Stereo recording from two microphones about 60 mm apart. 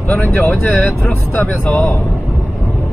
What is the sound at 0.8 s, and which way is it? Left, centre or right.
Speech, left.